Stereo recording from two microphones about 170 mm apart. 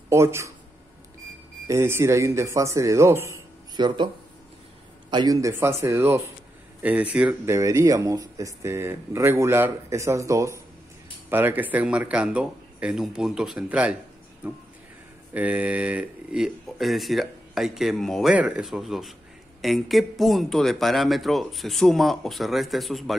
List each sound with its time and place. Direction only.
0.1 s speech: 15° right (ahead or behind)
1.7 s speech: 15° right (ahead or behind)
3.7 s speech: 25° right (ahead or behind)
5.1 s speech: 20° right (ahead or behind); by 23.1 s centre (ahead or behind)